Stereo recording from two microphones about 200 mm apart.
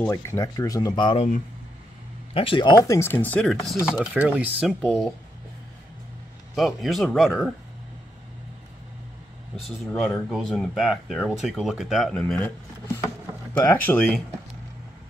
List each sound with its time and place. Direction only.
0.0 s speech: 15° left (ahead or behind)
2.3 s speech: 25° left (ahead or behind); by 4.7 s 5° right (ahead or behind)
6.5 s speech: centre (ahead or behind)
9.6 s speech: centre (ahead or behind)